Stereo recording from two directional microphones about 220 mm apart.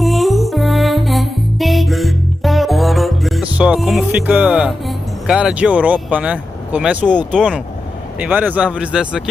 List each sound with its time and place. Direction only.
0.0 s music: centre (ahead or behind)
8.2 s speech: 5° right (ahead or behind)